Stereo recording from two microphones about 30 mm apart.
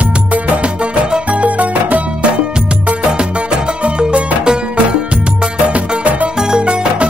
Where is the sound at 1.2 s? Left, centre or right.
Right.